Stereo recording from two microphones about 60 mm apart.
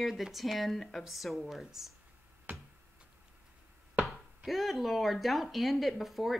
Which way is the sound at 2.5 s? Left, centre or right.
Right.